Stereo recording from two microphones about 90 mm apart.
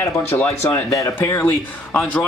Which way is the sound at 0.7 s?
40° left (ahead or behind).